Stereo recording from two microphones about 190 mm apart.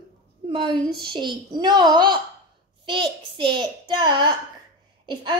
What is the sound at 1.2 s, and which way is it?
A woman's voice, 25° right (ahead or behind).